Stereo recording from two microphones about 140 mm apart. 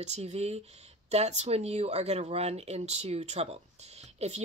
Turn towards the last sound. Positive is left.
turn(degrees=-50)  # may be behind; listen again after turning